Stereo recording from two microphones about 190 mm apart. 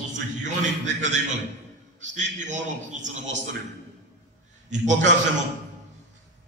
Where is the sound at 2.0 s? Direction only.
40° right (ahead or behind).